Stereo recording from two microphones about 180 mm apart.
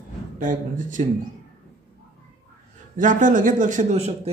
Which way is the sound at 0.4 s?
45° right (ahead or behind).